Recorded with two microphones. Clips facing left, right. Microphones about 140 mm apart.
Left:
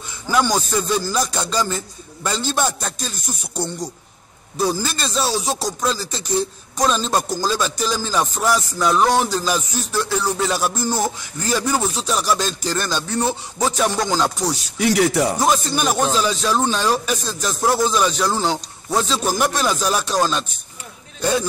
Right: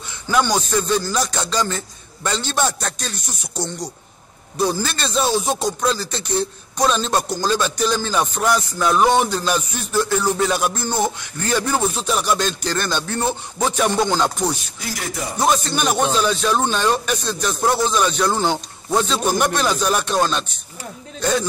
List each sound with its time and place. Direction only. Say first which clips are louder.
0.3 s a man's voice: even; centre (ahead or behind)
3.3 s music: left 3 dB; 5° left (ahead or behind)
14.8 s speech: left 11 dB; 75° left (ahead or behind)
15.4 s music: even; centre (ahead or behind)
21.2 s speech: even; 5° left (ahead or behind)